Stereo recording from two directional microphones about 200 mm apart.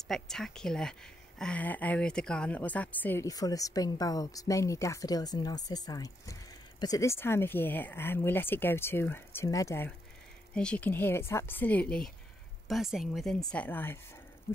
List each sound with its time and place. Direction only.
0.1 s a woman's voice: 5° left (ahead or behind)